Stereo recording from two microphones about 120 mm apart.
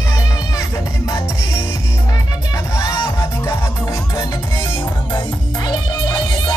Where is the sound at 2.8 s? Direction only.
35° left (ahead or behind).